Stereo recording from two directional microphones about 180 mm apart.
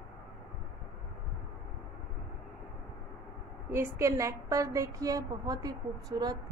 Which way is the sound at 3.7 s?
15° right (ahead or behind).